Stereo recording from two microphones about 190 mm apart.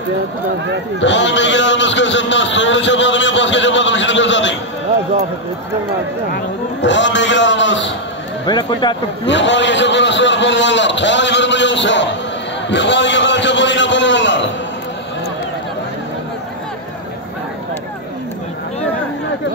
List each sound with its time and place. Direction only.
1.0 s a man's voice: 70° left (ahead or behind)
6.3 s a man's voice: 70° left (ahead or behind)
8.5 s speech: 20° left (ahead or behind)
9.2 s a man's voice: 70° left (ahead or behind)
12.6 s a sound: 70° left (ahead or behind)